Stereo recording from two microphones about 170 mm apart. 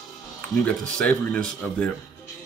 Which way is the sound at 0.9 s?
5° left (ahead or behind).